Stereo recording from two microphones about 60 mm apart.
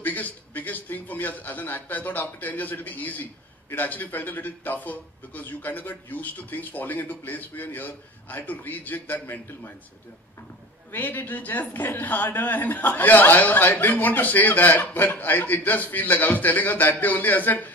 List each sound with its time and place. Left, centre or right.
0.0 s a man's voice: left
10.9 s a man's voice: left